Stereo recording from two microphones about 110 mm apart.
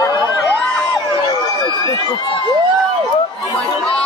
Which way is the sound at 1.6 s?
40° left (ahead or behind).